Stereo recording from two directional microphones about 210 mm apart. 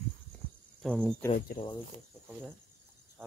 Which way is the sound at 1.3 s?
45° left (ahead or behind).